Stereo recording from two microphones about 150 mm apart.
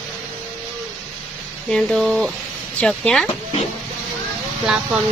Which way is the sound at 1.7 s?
5° left (ahead or behind).